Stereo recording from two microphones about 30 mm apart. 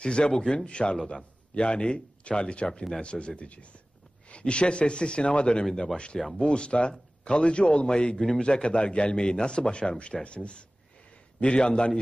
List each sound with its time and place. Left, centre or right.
0.0 s a man's voice: left
0.7 s a man's voice: left